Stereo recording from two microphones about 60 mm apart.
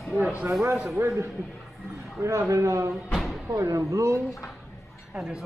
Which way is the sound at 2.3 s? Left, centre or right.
Right.